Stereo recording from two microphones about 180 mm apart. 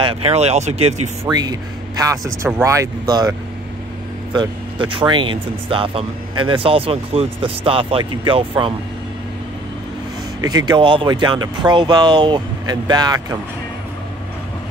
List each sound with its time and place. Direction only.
0.0 s speech: 35° right (ahead or behind)
1.2 s a man's voice: 20° right (ahead or behind)
10.4 s speech: 20° right (ahead or behind)